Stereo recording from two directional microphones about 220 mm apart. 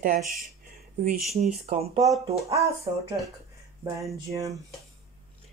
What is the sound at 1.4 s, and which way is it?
Speech, 30° right (ahead or behind).